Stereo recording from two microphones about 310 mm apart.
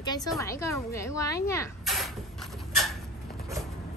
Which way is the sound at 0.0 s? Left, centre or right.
Centre.